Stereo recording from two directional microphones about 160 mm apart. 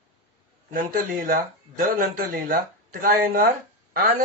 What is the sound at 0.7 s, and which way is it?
Speech, 60° right (ahead or behind).